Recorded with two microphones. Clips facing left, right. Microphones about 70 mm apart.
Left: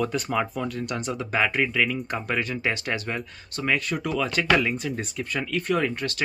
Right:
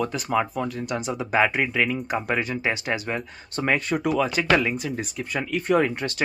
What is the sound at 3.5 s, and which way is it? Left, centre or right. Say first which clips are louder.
Speech: right 3 dB; right.